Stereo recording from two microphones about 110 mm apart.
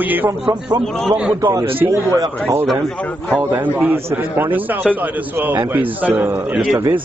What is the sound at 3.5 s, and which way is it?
A man's voice, 15° right (ahead or behind).